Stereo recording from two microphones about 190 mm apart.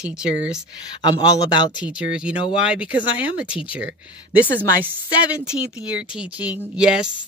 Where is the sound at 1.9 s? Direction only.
5° right (ahead or behind).